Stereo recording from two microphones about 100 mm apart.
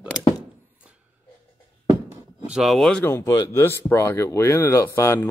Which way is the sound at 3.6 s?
25° left (ahead or behind).